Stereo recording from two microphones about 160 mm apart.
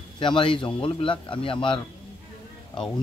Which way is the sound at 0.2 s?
30° left (ahead or behind).